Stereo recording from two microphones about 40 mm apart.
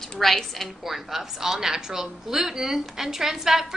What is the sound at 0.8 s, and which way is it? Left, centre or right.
A woman's voice, centre.